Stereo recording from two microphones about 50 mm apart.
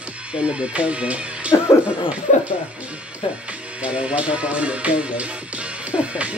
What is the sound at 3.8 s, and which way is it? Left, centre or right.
Speech, right.